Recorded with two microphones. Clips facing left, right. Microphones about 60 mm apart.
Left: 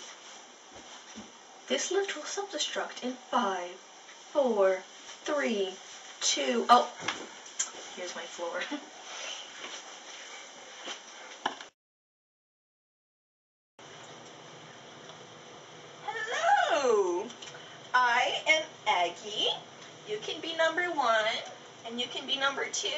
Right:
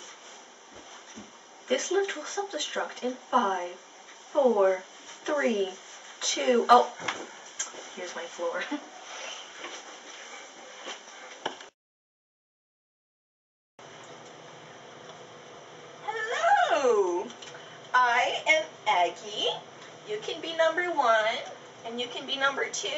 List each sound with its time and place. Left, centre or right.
1.7 s speech: centre
4.3 s a sound: centre
16.0 s dog: centre